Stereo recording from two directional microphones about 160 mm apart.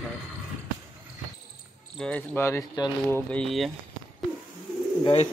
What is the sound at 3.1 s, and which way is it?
Speech, 5° left (ahead or behind).